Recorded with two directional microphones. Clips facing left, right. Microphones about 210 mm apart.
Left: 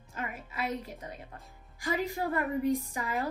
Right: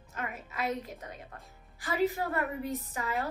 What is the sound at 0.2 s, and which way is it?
Music, 45° right (ahead or behind).